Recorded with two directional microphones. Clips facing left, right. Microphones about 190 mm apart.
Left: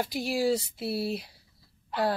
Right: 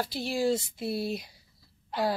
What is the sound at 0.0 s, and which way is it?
Speech, 10° left (ahead or behind).